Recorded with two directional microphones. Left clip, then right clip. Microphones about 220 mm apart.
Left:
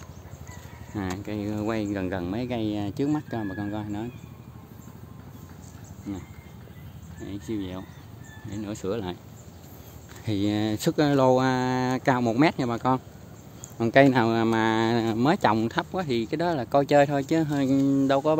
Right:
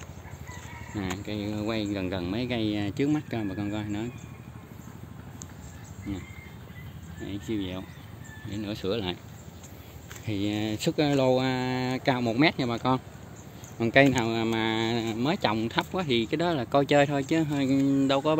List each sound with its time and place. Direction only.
0.9 s speech: 10° left (ahead or behind)
7.2 s speech: 5° left (ahead or behind)
10.2 s speech: 25° left (ahead or behind)
14.2 s speech: 25° left (ahead or behind)
15.7 s speech: 5° left (ahead or behind)